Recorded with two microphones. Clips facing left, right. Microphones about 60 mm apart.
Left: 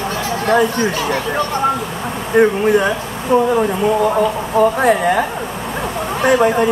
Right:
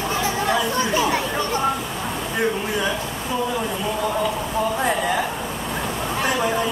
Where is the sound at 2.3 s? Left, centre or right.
Left.